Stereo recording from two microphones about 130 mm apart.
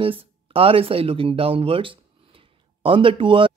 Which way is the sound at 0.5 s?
45° right (ahead or behind).